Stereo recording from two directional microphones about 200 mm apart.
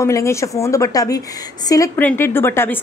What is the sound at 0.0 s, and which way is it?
A woman's voice, 15° left (ahead or behind).